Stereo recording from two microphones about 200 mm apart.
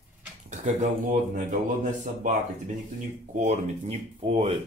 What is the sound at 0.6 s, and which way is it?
Speech, 40° right (ahead or behind).